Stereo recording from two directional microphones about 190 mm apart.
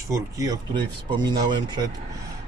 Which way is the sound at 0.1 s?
20° right (ahead or behind).